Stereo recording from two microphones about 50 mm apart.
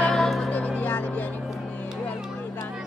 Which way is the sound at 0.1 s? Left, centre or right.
Centre.